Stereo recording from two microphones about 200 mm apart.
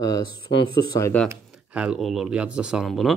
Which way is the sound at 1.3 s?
5° right (ahead or behind).